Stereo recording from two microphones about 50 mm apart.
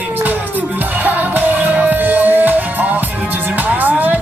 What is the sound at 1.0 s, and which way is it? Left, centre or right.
Music, right.